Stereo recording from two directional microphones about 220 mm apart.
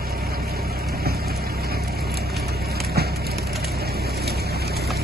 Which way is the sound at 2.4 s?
45° right (ahead or behind).